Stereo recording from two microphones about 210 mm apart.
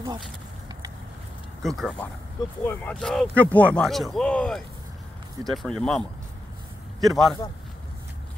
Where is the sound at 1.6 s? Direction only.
Centre (ahead or behind).